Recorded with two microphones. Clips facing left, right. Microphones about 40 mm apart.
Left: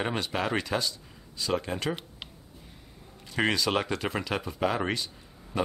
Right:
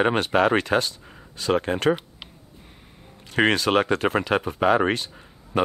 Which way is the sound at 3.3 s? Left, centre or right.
Right.